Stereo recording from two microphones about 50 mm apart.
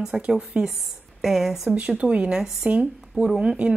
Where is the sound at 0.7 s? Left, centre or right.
Centre.